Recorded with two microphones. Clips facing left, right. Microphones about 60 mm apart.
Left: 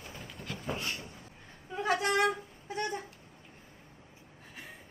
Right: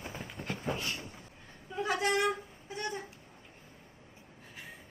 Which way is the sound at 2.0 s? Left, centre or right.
Left.